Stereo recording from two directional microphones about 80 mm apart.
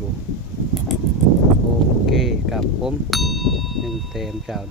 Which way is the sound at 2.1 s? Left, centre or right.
Centre.